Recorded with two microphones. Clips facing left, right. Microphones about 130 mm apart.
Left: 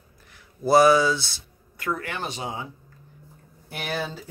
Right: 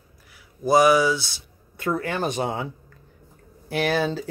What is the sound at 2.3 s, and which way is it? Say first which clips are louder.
Speech: right 6 dB; 60° right (ahead or behind).